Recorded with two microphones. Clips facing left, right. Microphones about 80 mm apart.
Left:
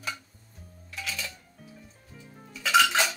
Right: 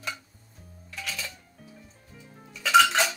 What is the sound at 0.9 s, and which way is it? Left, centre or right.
Music, centre.